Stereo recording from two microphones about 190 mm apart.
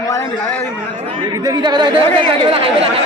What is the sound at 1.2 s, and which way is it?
Speech, 25° right (ahead or behind).